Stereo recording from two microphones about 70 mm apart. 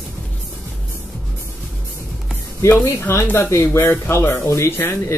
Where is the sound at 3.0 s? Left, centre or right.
Left.